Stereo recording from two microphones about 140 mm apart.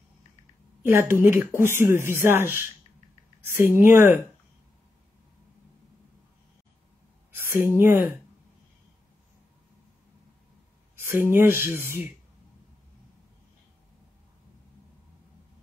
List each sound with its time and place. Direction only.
0.8 s speech: 20° right (ahead or behind)
7.3 s speech: 15° right (ahead or behind)
11.1 s speech: 20° right (ahead or behind)